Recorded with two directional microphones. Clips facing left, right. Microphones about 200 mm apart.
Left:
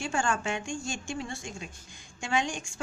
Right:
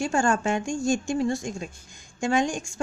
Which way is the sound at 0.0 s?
40° right (ahead or behind).